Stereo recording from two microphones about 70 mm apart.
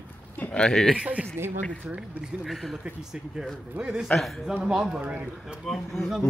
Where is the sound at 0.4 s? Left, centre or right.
Centre.